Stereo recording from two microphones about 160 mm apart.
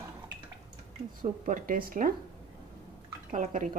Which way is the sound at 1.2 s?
60° right (ahead or behind).